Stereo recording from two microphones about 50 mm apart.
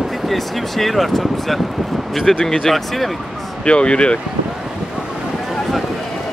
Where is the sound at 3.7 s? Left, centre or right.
Centre.